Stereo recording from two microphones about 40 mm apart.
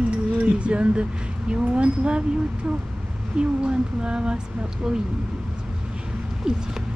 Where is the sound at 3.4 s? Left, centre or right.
Right.